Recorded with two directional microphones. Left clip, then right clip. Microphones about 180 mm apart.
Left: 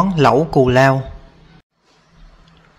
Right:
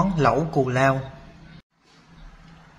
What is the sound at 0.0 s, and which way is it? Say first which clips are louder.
Speech: left 7 dB; 45° left (ahead or behind).